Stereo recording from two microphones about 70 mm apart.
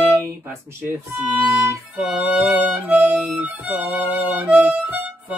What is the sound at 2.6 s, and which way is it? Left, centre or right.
Music, right.